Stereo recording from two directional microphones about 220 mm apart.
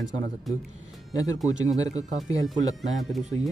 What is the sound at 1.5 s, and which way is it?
Speech, 15° left (ahead or behind).